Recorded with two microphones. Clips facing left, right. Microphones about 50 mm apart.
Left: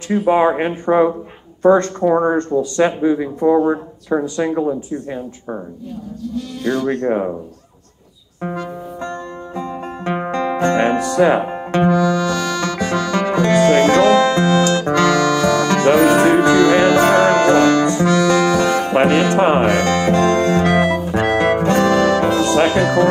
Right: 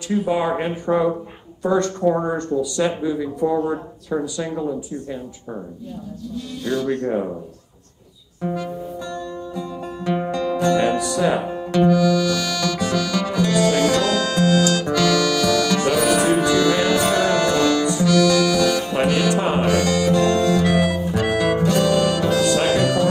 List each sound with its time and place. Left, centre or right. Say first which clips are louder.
0.1 s speech: left 6 dB; left
6.6 s speech: left 3 dB; left
8.4 s music: left 1 dB; left